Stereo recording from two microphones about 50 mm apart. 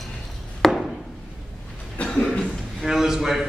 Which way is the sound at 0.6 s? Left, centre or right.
Centre.